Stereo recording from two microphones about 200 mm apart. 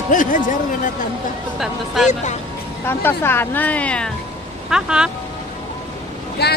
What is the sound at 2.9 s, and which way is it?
Speech, 10° left (ahead or behind).